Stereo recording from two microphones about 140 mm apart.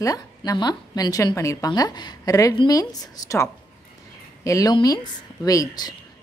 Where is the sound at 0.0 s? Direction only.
25° left (ahead or behind).